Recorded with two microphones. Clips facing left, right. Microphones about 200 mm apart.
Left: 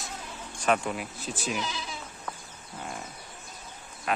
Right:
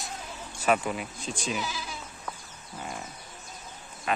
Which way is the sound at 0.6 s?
5° right (ahead or behind).